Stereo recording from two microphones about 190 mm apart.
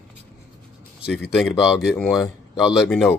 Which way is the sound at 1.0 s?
60° left (ahead or behind).